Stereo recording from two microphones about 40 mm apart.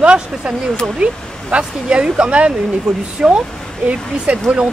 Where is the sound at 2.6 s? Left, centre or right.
Centre.